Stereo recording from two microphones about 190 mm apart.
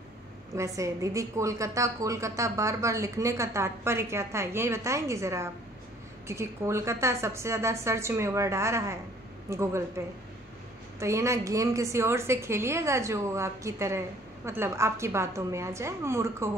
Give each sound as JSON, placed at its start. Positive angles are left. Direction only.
{"t": 0.6, "sound": "a woman's voice", "side_deg": -15}